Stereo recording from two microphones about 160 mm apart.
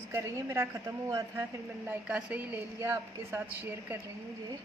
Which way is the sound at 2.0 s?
10° right (ahead or behind).